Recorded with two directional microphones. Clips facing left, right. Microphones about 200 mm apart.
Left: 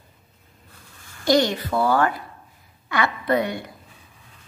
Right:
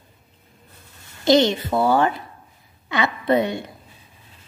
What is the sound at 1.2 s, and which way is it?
A woman's voice, 25° right (ahead or behind).